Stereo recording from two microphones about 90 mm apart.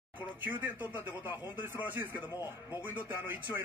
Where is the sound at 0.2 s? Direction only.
20° right (ahead or behind).